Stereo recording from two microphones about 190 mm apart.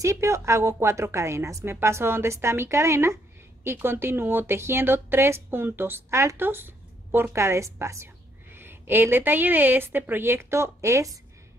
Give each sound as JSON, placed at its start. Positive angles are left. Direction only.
{"t": 0.0, "sound": "speech", "side_deg": -15}